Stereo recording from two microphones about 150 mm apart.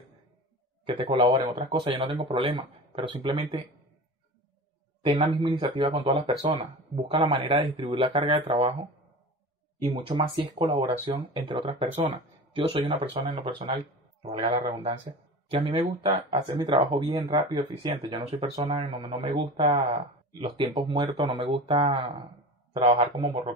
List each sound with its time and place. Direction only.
0.8 s speech: 35° right (ahead or behind)
5.0 s speech: 35° right (ahead or behind)
5.9 s speech: 45° right (ahead or behind)
9.8 s speech: 30° right (ahead or behind)